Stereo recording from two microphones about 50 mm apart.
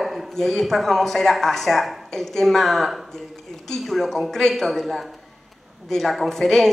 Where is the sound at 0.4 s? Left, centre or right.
Centre.